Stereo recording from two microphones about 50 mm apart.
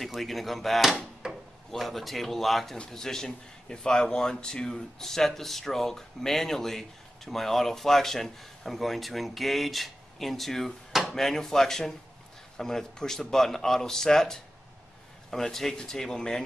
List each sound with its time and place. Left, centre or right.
0.0 s a man's voice: centre
1.2 s drawer open or close: centre
1.7 s a man's voice: centre